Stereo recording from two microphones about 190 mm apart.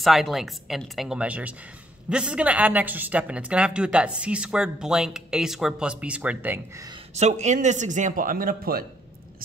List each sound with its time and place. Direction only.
0.0 s speech: centre (ahead or behind)
7.2 s speech: 35° right (ahead or behind)